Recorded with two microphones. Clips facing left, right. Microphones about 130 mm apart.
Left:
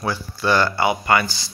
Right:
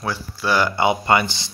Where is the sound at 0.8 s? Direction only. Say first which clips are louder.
Right 1 dB; 25° right (ahead or behind).